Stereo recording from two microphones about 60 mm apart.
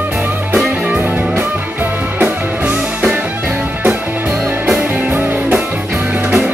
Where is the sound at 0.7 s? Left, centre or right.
Centre.